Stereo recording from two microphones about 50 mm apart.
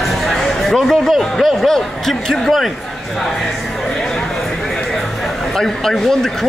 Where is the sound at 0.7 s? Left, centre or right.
Centre.